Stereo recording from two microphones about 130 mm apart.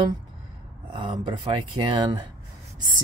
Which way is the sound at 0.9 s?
35° right (ahead or behind).